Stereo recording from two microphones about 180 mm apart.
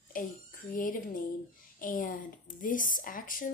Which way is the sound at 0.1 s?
50° left (ahead or behind).